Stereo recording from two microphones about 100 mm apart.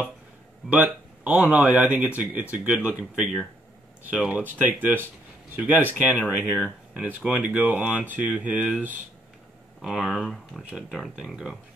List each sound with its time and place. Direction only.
0.7 s speech: 15° right (ahead or behind)